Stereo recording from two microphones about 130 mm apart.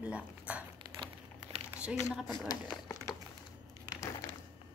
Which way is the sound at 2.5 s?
25° left (ahead or behind).